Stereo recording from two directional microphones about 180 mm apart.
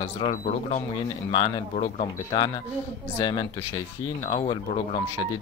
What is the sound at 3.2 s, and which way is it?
Speech, 25° left (ahead or behind).